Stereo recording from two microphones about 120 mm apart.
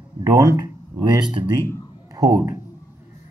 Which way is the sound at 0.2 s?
25° right (ahead or behind).